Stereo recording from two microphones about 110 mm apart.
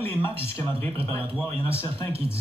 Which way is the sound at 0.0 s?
20° left (ahead or behind).